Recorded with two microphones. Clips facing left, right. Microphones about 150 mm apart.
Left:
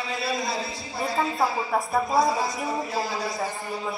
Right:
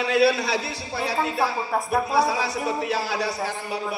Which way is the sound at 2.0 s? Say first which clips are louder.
Even; 70° right (ahead or behind).